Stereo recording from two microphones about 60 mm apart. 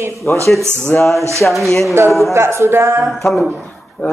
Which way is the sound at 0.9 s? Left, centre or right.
Left.